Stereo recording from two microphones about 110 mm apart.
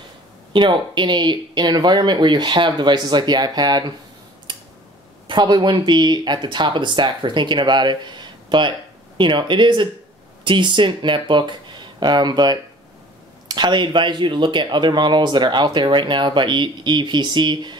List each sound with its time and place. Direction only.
0.5 s speech: 45° right (ahead or behind)
4.5 s a sound: 50° right (ahead or behind)
5.3 s speech: 40° right (ahead or behind)